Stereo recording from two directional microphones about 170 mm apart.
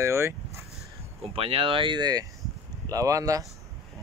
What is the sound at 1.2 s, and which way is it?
Speech, 35° right (ahead or behind).